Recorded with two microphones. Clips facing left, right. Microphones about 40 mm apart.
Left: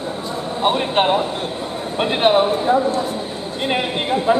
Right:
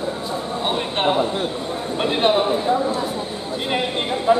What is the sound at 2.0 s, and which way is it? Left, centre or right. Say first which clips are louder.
Speech: left 3 dB; centre.